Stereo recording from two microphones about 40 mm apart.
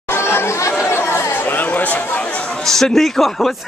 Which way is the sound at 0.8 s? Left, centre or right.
Left.